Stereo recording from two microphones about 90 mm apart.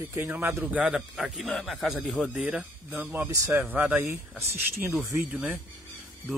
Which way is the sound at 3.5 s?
20° right (ahead or behind).